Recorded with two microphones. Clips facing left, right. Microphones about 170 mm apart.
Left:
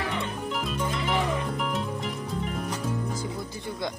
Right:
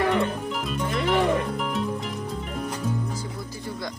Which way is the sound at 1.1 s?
65° right (ahead or behind).